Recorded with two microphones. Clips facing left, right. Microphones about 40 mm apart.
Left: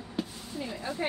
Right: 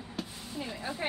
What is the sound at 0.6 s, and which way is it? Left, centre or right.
Speech, centre.